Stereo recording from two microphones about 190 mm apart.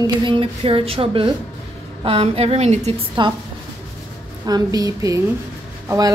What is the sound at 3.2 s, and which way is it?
Speech, 25° right (ahead or behind).